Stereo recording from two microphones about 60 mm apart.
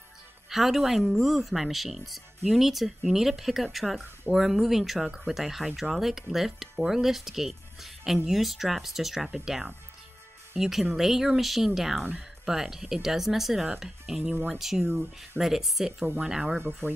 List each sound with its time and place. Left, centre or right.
0.5 s speech: centre